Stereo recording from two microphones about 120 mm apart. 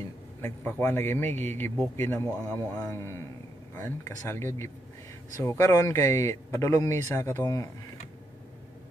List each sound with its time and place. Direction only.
0.4 s a man's voice: 20° left (ahead or behind)
2.5 s a man's voice: 10° left (ahead or behind)
3.0 s speech: 20° left (ahead or behind)